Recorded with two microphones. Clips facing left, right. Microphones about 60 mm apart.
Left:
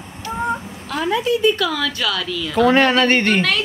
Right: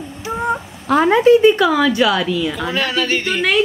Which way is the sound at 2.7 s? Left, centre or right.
Left.